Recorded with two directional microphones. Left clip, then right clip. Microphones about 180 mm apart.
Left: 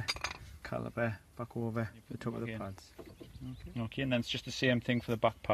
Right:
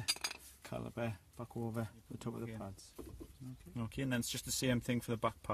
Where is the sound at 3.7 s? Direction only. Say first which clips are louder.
Left 5 dB; 25° right (ahead or behind).